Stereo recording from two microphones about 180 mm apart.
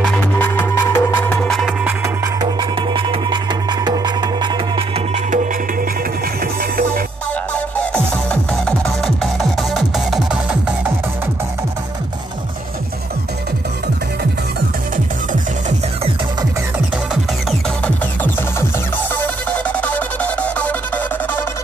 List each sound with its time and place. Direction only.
0.0 s music: 10° left (ahead or behind)
1.5 s music: centre (ahead or behind)
2.4 s music: 25° right (ahead or behind)
6.4 s music: 55° right (ahead or behind)
7.5 s music: 5° left (ahead or behind)
16.7 s music: 5° right (ahead or behind)
17.8 s music: 10° left (ahead or behind)